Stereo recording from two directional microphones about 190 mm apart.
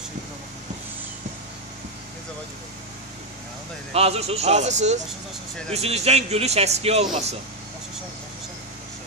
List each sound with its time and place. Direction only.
3.9 s speech: 35° right (ahead or behind)